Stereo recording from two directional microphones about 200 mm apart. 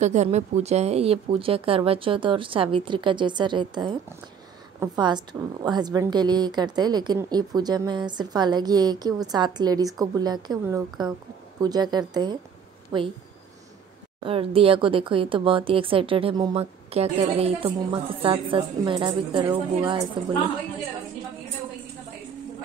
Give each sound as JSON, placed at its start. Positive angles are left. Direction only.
{"t": 0.0, "sound": "a woman's voice", "side_deg": -35}
{"t": 14.2, "sound": "a woman's voice", "side_deg": -25}